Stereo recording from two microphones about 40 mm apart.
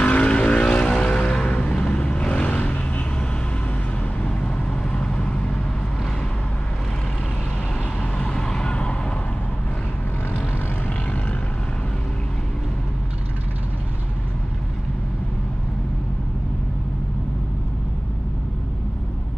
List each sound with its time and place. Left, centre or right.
0.0 s vehicle: left
4.2 s vehicle: left
8.0 s vehicle: left